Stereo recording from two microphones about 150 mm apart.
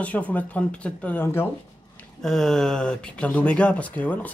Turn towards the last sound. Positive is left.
turn(degrees=10)  # may be behind; listen again after turning